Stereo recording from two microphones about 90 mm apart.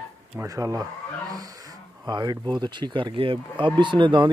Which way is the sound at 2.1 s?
55° right (ahead or behind).